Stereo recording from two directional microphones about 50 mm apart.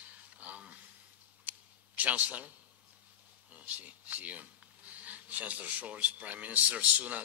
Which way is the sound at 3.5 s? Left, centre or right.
Right.